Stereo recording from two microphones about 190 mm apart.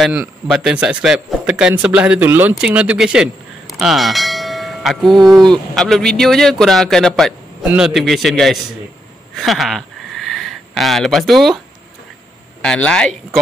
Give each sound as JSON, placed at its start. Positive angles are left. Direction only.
{"t": 0.0, "sound": "a man's voice", "side_deg": -5}
{"t": 5.0, "sound": "speech", "side_deg": -20}
{"t": 5.5, "sound": "a man's voice", "side_deg": 0}
{"t": 9.3, "sound": "a sound", "side_deg": 0}
{"t": 10.8, "sound": "a man's voice", "side_deg": 0}
{"t": 12.6, "sound": "a man's voice", "side_deg": 5}